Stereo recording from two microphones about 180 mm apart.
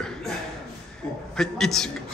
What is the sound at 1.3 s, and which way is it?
Speech, centre (ahead or behind).